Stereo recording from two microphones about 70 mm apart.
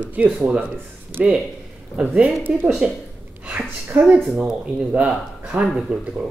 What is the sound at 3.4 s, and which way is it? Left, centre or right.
Speech, right.